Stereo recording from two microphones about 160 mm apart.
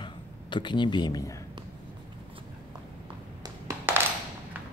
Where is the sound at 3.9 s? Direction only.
10° right (ahead or behind).